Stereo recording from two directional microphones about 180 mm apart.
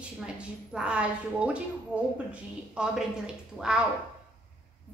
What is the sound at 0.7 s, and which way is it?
A woman's voice, 5° right (ahead or behind).